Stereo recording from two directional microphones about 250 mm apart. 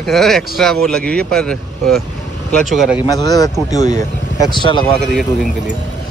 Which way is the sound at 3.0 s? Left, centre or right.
Centre.